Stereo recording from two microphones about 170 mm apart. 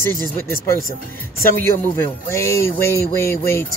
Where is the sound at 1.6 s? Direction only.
15° left (ahead or behind).